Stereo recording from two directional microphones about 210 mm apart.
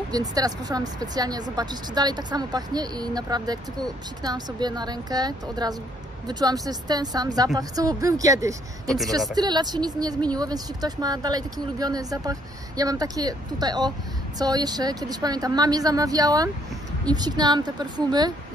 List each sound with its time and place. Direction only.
0.1 s speech: 15° right (ahead or behind)